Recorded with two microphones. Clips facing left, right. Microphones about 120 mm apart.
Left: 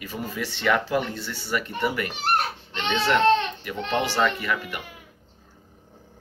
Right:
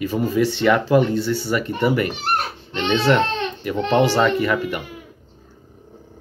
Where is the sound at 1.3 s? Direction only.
35° right (ahead or behind).